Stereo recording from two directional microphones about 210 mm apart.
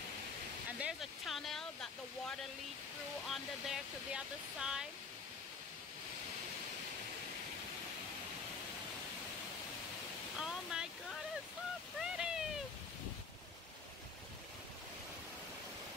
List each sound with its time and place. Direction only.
0.7 s speech: 5° right (ahead or behind)
10.4 s speech: 5° right (ahead or behind)
12.0 s a sound: 5° right (ahead or behind)